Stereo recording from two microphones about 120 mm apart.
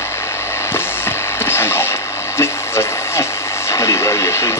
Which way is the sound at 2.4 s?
20° left (ahead or behind).